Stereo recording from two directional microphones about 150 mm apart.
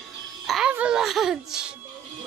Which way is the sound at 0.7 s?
5° right (ahead or behind).